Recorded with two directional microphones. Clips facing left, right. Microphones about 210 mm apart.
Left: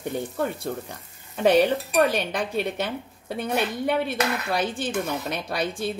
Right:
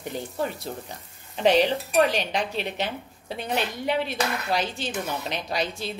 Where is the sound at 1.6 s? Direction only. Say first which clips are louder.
Left 1 dB; 50° left (ahead or behind).